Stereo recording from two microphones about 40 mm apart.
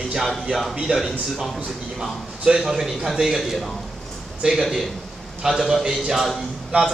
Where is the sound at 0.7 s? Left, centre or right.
Centre.